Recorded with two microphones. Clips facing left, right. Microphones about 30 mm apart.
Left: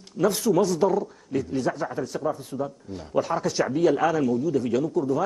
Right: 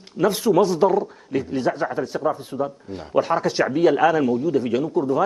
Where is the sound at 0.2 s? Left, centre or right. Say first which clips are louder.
Right 4 dB; right.